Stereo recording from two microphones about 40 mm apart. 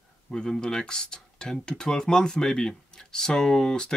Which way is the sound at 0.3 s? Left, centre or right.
Centre.